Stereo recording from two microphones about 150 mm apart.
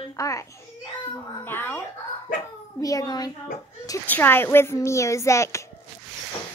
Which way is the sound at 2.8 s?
25° left (ahead or behind).